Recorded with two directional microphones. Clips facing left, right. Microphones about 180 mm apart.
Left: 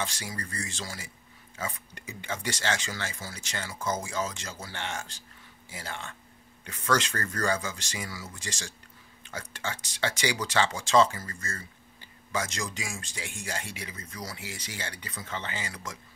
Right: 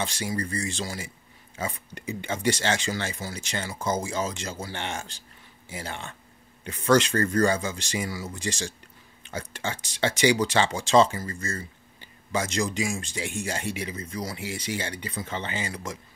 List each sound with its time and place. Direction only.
0.0 s speech: 25° right (ahead or behind)